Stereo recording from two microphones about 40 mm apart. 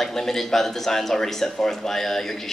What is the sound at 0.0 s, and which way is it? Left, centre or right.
Speech, centre.